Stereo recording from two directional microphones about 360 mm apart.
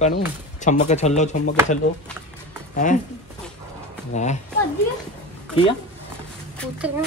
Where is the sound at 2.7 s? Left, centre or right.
Left.